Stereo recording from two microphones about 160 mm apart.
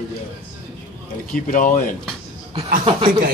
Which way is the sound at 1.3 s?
60° left (ahead or behind).